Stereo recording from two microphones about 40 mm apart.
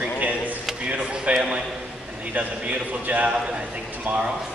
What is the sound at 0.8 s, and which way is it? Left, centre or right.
Speech, right.